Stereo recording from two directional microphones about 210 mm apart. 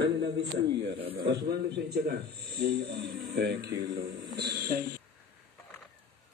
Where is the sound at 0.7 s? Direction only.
25° right (ahead or behind).